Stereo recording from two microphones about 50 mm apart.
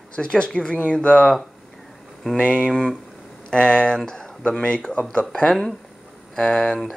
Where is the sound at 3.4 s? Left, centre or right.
Centre.